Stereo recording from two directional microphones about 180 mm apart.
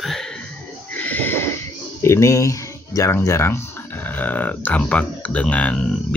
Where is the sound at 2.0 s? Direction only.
15° left (ahead or behind).